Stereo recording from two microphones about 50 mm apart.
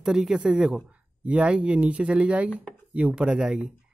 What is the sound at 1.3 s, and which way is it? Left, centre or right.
Speech, right.